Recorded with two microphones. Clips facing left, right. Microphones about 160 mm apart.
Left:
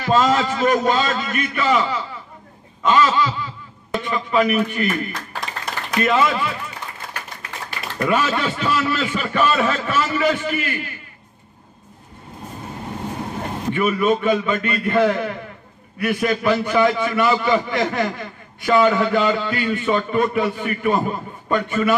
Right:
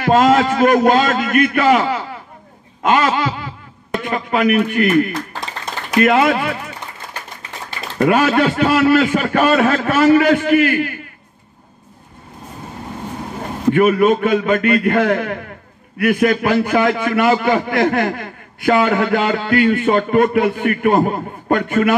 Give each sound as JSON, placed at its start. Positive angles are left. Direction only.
{"t": 0.0, "sound": "a man's voice", "side_deg": -55}
{"t": 2.8, "sound": "a sound", "side_deg": -55}
{"t": 4.0, "sound": "a man's voice", "side_deg": -60}
{"t": 8.1, "sound": "a man's voice", "side_deg": -55}
{"t": 13.7, "sound": "a man's voice", "side_deg": -55}